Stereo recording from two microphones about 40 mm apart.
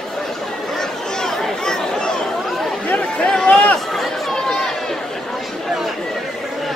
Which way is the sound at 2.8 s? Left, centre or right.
Left.